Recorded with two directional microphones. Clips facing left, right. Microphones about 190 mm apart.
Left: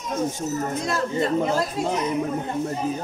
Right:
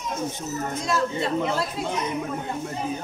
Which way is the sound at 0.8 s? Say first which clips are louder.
Even; 45° left (ahead or behind).